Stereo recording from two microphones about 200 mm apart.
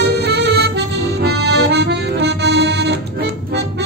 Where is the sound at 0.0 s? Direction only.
55° right (ahead or behind).